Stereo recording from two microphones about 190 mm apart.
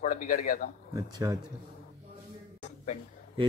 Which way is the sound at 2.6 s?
35° left (ahead or behind).